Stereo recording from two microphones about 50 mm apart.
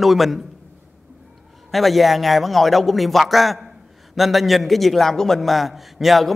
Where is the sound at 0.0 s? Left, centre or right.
Centre.